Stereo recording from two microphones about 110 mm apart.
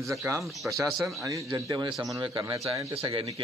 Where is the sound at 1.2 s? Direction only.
30° right (ahead or behind).